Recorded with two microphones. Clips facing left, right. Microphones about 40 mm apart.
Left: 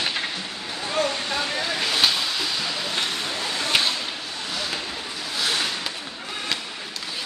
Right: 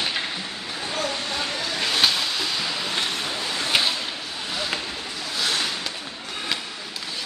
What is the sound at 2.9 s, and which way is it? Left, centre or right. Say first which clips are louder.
Vehicle: even; centre.